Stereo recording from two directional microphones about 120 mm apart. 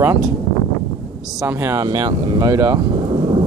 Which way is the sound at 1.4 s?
25° right (ahead or behind).